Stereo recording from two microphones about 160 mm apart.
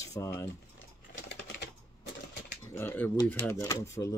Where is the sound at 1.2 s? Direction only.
90° left.